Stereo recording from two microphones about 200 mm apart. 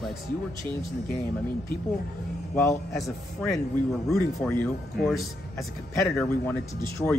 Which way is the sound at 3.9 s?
5° left (ahead or behind).